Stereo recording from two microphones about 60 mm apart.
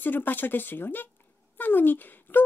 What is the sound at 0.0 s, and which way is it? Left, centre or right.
Speech, left.